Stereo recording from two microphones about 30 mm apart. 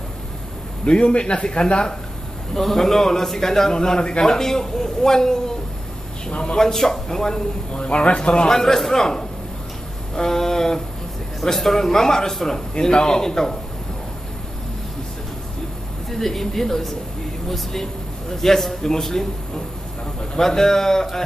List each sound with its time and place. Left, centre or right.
0.8 s a man's voice: left
2.5 s a man's voice: centre
4.0 s a man's voice: left
4.3 s a man's voice: centre
6.5 s a man's voice: centre
7.7 s a man's voice: left
8.2 s a sound: left
8.5 s a man's voice: centre
10.1 s a sound: centre
11.4 s a man's voice: centre
12.9 s a sound: left
16.1 s a man's voice: centre
18.4 s a man's voice: centre